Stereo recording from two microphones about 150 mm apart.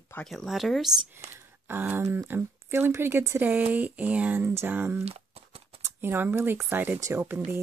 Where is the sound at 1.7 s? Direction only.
15° right (ahead or behind).